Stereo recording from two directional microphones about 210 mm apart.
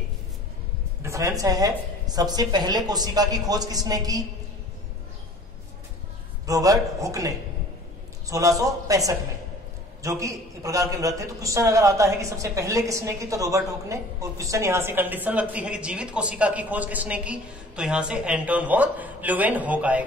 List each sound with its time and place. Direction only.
1.0 s a man's voice: 15° right (ahead or behind)
6.4 s a man's voice: 15° right (ahead or behind)